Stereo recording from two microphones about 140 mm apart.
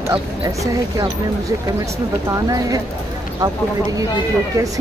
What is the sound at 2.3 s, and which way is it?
Speech, 25° right (ahead or behind).